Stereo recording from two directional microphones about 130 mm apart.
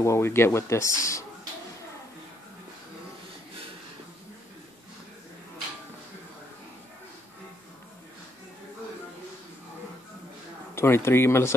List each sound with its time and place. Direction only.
0.0 s speech: 20° left (ahead or behind)
10.7 s speech: 20° left (ahead or behind)